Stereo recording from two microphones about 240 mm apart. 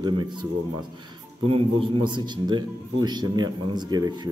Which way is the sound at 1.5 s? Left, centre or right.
Right.